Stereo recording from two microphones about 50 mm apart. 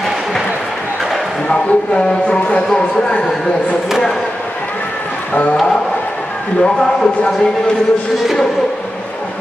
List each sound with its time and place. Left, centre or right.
1.5 s speech: left
6.6 s speech: centre